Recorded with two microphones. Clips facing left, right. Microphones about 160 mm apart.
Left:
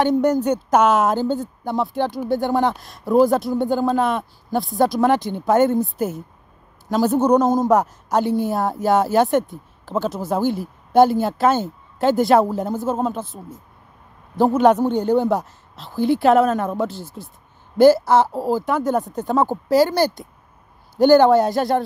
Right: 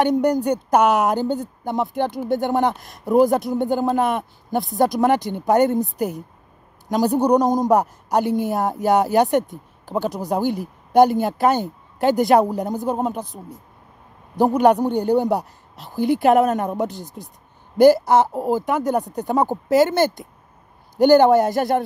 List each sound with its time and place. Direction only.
0.2 s speech: 15° right (ahead or behind)